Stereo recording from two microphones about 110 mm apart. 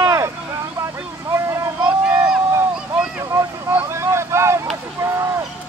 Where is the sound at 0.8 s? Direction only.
25° right (ahead or behind).